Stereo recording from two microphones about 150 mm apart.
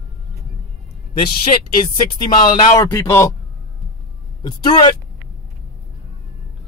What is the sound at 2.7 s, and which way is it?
Speech, 20° left (ahead or behind).